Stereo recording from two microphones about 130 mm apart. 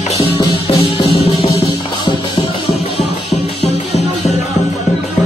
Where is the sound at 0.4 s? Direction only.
40° left (ahead or behind).